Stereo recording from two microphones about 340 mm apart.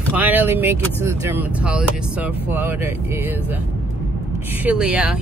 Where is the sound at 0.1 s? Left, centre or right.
Centre.